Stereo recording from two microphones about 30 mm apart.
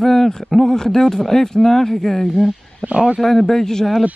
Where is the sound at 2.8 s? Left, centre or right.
Right.